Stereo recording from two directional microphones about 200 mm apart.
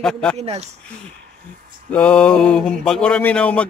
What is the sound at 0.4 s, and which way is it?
Speech, 35° right (ahead or behind).